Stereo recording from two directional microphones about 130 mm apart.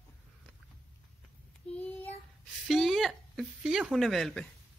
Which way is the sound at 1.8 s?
15° left (ahead or behind).